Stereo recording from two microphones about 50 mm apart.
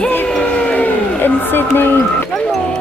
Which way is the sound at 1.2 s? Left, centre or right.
Left.